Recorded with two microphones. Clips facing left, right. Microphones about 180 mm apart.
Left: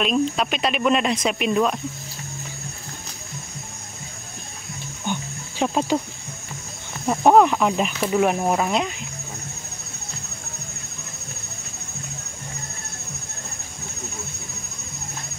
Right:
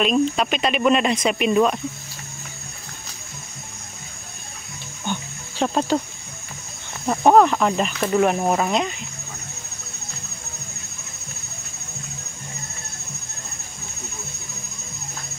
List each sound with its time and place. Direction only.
0.0 s speech: centre (ahead or behind)
5.1 s music: 10° left (ahead or behind)
5.6 s speech: 5° left (ahead or behind)
7.1 s speech: 5° left (ahead or behind)